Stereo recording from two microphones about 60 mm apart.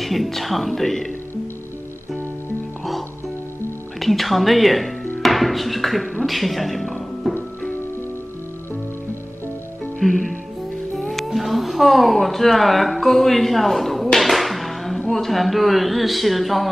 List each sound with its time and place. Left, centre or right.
0.0 s speech: centre
4.0 s speech: centre
9.9 s music: centre
11.0 s speech: centre